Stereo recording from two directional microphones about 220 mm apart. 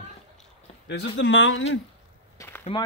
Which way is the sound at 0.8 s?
55° left (ahead or behind).